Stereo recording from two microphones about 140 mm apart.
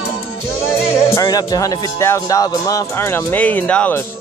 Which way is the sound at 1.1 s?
25° left (ahead or behind).